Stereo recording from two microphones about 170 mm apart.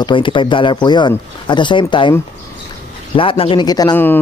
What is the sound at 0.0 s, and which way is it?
A man's voice, 30° left (ahead or behind).